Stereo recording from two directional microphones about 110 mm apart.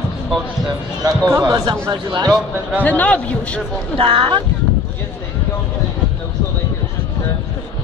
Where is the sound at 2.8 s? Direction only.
15° left (ahead or behind).